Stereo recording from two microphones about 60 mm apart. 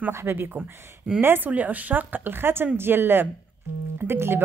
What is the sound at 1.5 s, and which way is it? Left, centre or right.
A woman's voice, right.